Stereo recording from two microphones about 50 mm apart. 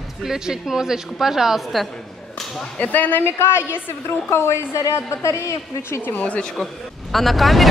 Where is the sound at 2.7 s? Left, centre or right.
Left.